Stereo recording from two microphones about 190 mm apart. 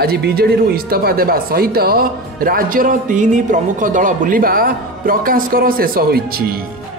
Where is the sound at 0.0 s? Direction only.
55° right (ahead or behind).